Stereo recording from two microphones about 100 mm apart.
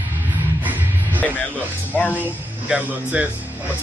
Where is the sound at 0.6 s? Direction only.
15° right (ahead or behind).